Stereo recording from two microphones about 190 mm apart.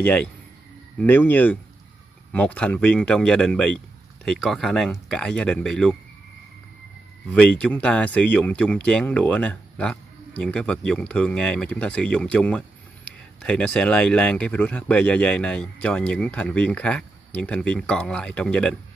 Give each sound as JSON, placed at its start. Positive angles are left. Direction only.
{"t": 0.0, "sound": "speech", "side_deg": 5}
{"t": 7.3, "sound": "speech", "side_deg": 5}